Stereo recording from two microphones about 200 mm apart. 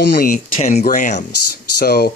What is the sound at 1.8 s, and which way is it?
Speech, 50° left (ahead or behind).